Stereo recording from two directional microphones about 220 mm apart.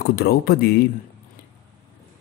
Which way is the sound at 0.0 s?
45° left (ahead or behind).